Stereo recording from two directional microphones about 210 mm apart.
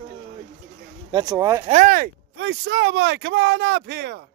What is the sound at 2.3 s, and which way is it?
Speech, 55° right (ahead or behind).